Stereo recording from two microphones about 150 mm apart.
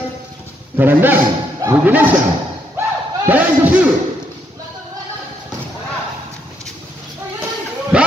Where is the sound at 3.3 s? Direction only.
10° right (ahead or behind).